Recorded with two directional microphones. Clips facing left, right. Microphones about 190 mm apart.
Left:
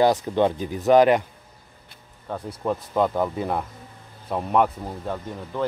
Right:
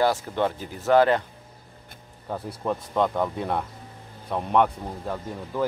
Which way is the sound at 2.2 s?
Centre (ahead or behind).